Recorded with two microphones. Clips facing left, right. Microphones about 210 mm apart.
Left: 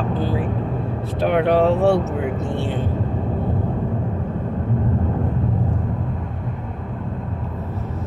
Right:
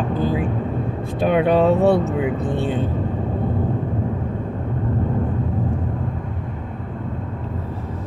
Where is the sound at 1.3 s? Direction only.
20° right (ahead or behind).